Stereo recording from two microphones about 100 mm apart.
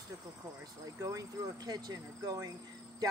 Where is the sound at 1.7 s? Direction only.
40° right (ahead or behind).